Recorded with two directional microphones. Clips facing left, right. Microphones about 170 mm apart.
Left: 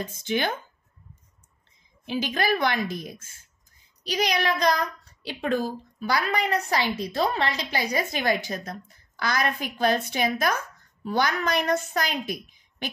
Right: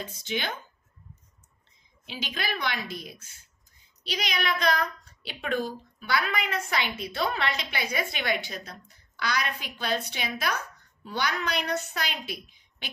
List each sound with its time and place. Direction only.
0.0 s a woman's voice: 50° left (ahead or behind)
2.0 s a woman's voice: 45° left (ahead or behind)
5.9 s a child's voice: 40° left (ahead or behind)